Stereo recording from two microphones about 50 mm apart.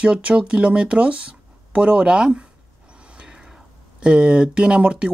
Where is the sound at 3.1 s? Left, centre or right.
Centre.